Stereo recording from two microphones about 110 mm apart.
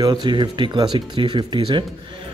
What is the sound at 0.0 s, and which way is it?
Speech, 45° right (ahead or behind).